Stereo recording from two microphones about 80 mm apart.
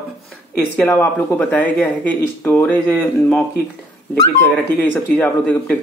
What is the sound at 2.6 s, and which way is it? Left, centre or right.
Speech, centre.